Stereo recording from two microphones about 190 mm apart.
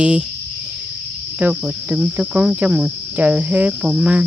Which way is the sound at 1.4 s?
5° right (ahead or behind).